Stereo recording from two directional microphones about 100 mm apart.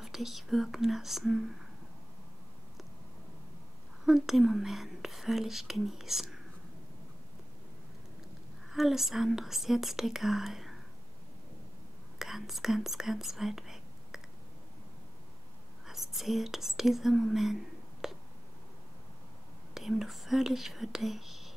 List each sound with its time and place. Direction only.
0.0 s speech: 5° right (ahead or behind)
4.0 s speech: 5° right (ahead or behind)
8.7 s speech: 5° right (ahead or behind)
12.2 s speech: 5° right (ahead or behind)
15.9 s speech: 5° right (ahead or behind)
18.0 s a sound: 5° right (ahead or behind)
19.7 s speech: centre (ahead or behind)